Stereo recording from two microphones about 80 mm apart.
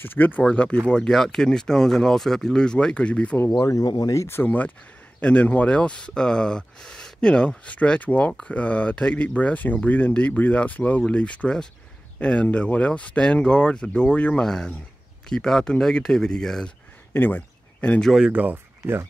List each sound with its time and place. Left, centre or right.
0.0 s speech: left
3.5 s speech: left
4.4 s speech: left
17.1 s a sound: left
18.3 s speech: right